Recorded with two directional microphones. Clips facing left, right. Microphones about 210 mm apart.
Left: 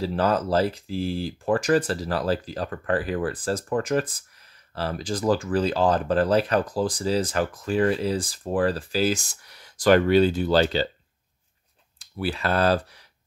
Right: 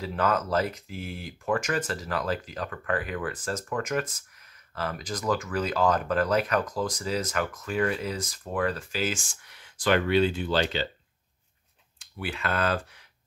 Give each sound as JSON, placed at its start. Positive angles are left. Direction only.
{"t": 0.0, "sound": "speech", "side_deg": 30}
{"t": 12.0, "sound": "speech", "side_deg": 35}